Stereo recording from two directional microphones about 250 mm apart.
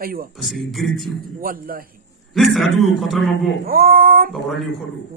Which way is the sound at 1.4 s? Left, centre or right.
Right.